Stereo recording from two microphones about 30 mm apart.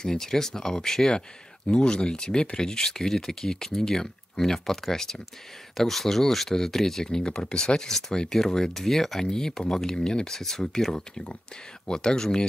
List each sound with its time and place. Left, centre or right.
0.0 s speech: centre
1.7 s speech: left
7.2 s speech: left